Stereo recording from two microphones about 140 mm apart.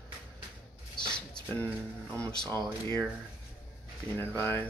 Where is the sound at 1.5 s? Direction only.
10° left (ahead or behind).